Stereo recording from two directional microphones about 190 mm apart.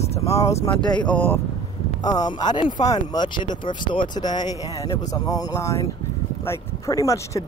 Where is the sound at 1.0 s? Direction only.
10° left (ahead or behind).